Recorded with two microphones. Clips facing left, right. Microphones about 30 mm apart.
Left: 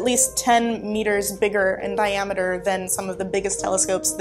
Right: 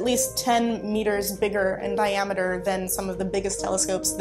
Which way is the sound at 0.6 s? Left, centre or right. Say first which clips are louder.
Left 3 dB; left.